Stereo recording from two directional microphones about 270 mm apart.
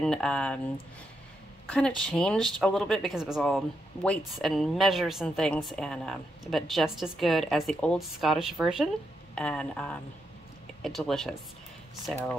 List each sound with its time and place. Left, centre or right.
0.0 s speech: centre
2.0 s speech: centre